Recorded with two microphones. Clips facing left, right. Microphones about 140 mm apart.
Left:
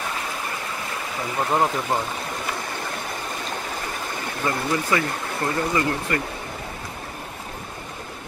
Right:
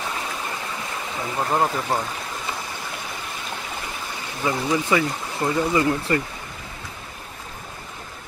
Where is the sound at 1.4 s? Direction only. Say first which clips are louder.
Even; centre (ahead or behind).